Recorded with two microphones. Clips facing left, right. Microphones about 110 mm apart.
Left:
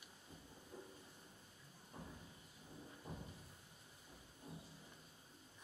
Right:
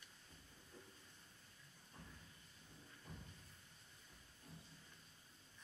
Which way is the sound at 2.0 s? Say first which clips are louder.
Left 6 dB; 25° left (ahead or behind).